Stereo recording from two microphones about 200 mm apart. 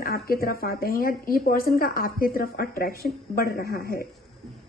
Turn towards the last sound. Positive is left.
turn(degrees=50)  # may be behind; listen again after turning